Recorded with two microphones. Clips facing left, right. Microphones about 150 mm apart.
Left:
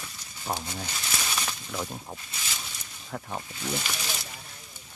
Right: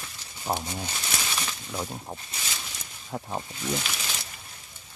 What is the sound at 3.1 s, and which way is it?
Speech, 25° right (ahead or behind).